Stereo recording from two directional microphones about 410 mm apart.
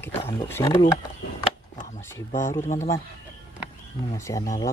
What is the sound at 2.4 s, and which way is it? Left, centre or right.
Speech, centre.